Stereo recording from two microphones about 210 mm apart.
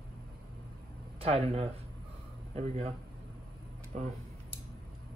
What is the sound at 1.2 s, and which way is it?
Speech, 30° right (ahead or behind).